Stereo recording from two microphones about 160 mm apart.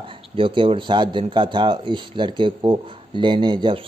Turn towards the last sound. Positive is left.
turn(degrees=-30)  # may be behind; listen again after turning